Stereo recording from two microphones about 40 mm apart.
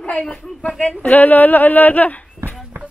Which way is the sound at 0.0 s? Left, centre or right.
Left.